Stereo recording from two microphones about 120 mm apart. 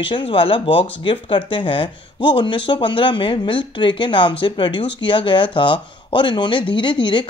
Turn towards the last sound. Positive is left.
turn(degrees=40)  # may be behind; listen again after turning